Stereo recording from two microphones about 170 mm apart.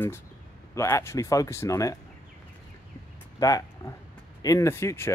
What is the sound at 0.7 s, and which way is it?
Speech, 15° left (ahead or behind).